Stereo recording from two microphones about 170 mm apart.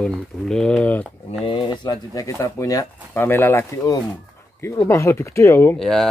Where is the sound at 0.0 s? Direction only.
5° left (ahead or behind).